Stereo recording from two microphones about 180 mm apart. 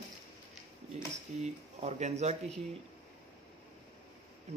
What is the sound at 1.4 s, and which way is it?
Speech, 40° right (ahead or behind).